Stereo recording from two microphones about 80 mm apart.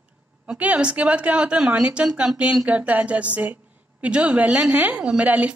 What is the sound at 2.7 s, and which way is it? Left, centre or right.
Speech, centre.